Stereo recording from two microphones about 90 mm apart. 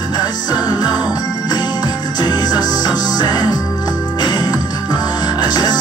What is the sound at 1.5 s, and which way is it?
Music, 50° left (ahead or behind).